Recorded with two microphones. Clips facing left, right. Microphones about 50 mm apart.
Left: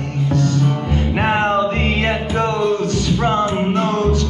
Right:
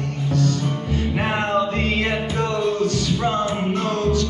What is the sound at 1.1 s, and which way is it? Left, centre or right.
Music, left.